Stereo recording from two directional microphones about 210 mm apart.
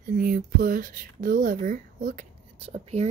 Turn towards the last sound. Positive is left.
turn(degrees=-30)  # may be behind; listen again after turning